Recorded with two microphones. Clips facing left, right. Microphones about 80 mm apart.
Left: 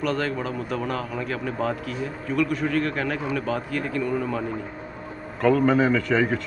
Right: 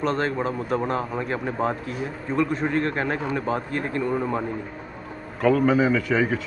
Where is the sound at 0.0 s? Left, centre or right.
Right.